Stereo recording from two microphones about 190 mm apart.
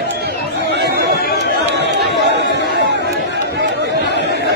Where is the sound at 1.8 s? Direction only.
60° right (ahead or behind).